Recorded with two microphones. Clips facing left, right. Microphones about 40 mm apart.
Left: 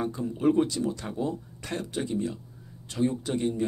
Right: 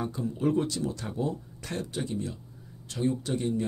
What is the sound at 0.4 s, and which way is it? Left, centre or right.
Speech, left.